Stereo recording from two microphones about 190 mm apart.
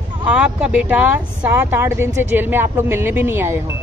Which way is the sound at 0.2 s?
5° right (ahead or behind).